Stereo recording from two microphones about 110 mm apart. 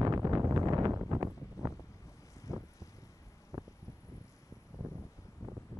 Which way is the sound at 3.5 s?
40° right (ahead or behind).